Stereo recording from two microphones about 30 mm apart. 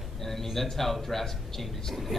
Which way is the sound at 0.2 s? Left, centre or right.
Centre.